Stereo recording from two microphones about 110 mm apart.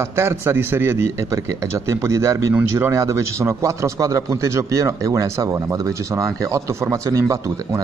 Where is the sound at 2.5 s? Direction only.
20° right (ahead or behind).